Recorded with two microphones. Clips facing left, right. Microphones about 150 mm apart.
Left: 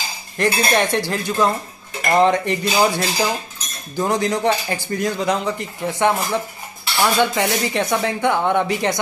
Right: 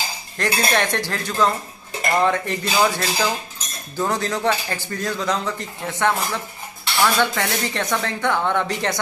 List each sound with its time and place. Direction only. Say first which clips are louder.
0.4 s speech: left 3 dB; 15° left (ahead or behind)
4.0 s speech: left 3 dB; 15° left (ahead or behind)